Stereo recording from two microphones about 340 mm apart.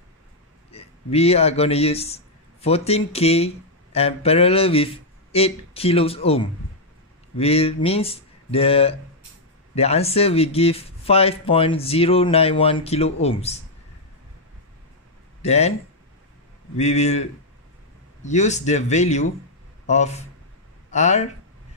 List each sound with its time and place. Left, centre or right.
0.7 s speech: centre
15.4 s speech: centre
16.7 s speech: centre